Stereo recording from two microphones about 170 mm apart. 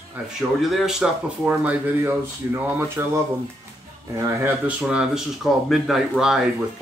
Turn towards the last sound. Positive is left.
turn(degrees=-5)  # may be behind; listen again after turning